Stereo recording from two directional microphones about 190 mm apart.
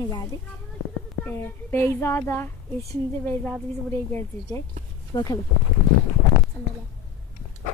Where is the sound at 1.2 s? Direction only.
10° left (ahead or behind).